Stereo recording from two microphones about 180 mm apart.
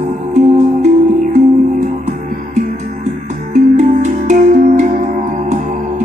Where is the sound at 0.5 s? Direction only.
40° right (ahead or behind).